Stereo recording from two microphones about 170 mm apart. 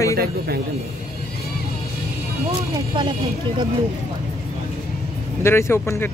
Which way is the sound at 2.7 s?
25° right (ahead or behind).